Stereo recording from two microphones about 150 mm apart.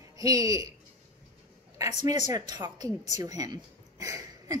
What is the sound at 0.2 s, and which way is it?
Speech, 25° right (ahead or behind).